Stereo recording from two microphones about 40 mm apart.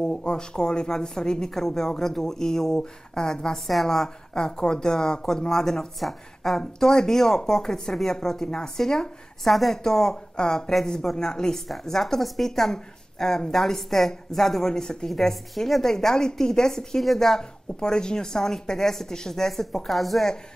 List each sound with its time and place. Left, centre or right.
0.0 s a woman's voice: centre
3.5 s a woman's voice: centre
4.3 s a woman's voice: centre